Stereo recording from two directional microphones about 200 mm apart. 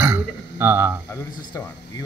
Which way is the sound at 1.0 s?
15° left (ahead or behind).